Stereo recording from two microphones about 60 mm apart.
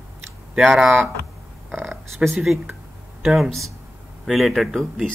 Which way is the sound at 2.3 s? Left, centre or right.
Centre.